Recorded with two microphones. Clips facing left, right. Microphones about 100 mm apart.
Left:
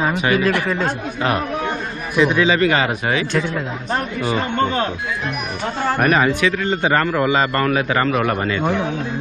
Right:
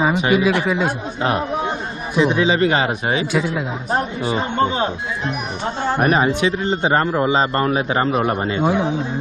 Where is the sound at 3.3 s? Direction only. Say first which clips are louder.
Right 1 dB; 5° right (ahead or behind); by 8.7 s 25° right (ahead or behind).